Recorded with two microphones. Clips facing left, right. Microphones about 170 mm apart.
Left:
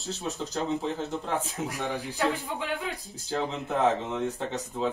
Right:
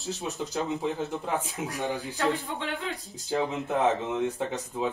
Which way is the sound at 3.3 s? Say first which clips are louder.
Right 2 dB; 10° right (ahead or behind).